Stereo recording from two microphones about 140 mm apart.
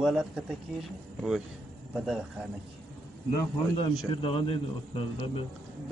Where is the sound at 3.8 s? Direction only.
40° left (ahead or behind).